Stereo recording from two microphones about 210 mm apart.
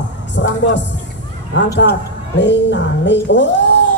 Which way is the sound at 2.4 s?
55° left (ahead or behind).